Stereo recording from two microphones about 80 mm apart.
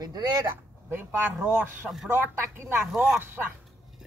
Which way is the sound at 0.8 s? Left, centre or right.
Right.